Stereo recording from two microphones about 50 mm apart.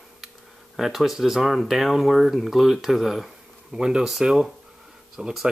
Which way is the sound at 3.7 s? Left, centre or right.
Centre.